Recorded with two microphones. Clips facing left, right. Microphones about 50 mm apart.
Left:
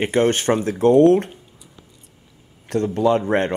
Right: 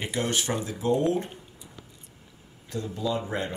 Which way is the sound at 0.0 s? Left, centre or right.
Left.